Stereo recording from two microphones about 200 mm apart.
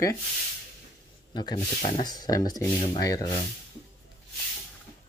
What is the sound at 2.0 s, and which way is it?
Speech, 20° left (ahead or behind).